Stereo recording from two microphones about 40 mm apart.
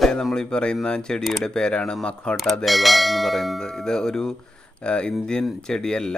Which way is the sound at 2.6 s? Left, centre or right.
Centre.